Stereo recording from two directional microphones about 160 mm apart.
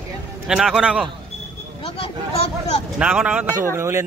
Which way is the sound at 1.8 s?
40° left (ahead or behind).